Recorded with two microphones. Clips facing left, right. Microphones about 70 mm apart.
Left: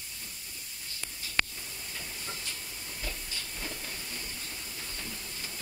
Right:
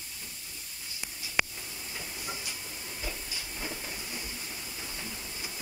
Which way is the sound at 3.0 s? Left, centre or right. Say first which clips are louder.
Right 1 dB; centre.